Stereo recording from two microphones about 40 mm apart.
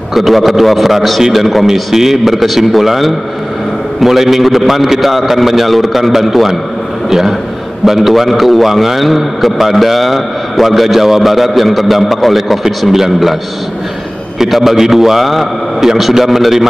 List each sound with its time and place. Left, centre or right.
0.1 s a man's voice: centre
14.4 s a man's voice: centre